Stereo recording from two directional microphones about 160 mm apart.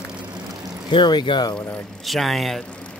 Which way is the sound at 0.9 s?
30° left (ahead or behind).